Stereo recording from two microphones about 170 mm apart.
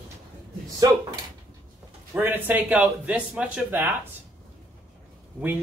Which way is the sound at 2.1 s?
10° right (ahead or behind).